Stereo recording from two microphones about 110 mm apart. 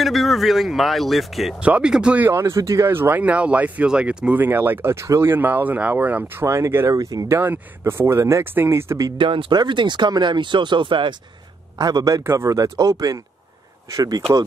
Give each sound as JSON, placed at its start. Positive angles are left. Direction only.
{"t": 0.0, "sound": "speech", "side_deg": 0}
{"t": 9.2, "sound": "speech", "side_deg": -50}
{"t": 11.8, "sound": "speech", "side_deg": -30}